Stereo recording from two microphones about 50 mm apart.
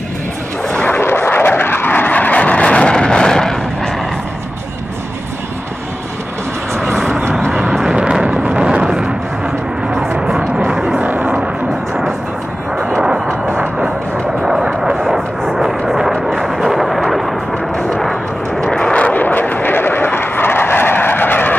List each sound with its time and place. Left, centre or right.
0.7 s a sound: left
1.0 s vehicle: left; by 3.9 s centre
7.9 s a sound: centre
10.1 s vehicle: centre
11.0 s vehicle: right
13.6 s vehicle: right
14.4 s vehicle: centre
15.0 s vehicle: centre
16.3 s artillery fire: centre
18.5 s vehicle: centre
19.0 s vehicle: left